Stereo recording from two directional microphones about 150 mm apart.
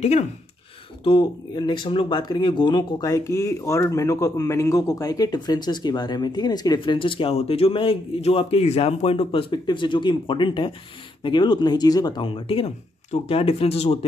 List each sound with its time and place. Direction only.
1.0 s speech: 30° left (ahead or behind)